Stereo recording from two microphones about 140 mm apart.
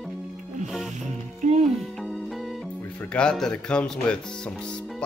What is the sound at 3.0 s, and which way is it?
Speech, 5° left (ahead or behind).